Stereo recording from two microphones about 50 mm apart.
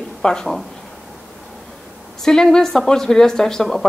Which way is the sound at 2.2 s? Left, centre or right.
Centre.